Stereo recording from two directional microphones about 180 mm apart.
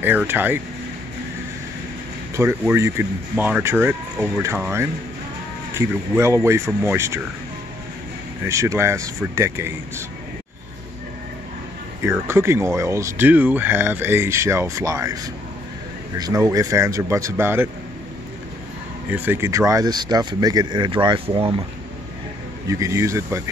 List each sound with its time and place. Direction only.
0.0 s speech: 10° right (ahead or behind)
2.3 s speech: 15° right (ahead or behind)
8.5 s speech: 15° right (ahead or behind)
12.0 s speech: 15° right (ahead or behind)
16.2 s speech: 20° right (ahead or behind)
19.0 s speech: 10° right (ahead or behind); by 21.6 s 30° right (ahead or behind)
22.7 s speech: 15° right (ahead or behind)